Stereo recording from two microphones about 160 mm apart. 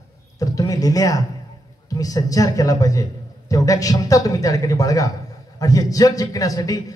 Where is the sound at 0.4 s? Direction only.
20° left (ahead or behind).